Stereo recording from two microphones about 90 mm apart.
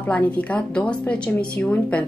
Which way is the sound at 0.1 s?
15° left (ahead or behind).